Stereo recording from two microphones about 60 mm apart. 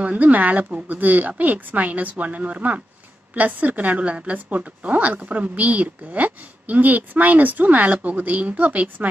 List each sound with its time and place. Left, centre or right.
0.0 s a woman's voice: right